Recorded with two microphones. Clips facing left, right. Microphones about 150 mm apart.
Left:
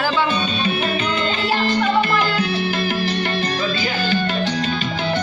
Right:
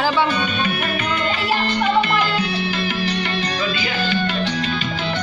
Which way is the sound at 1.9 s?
45° left (ahead or behind).